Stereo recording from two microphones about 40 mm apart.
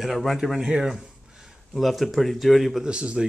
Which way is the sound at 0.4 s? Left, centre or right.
Centre.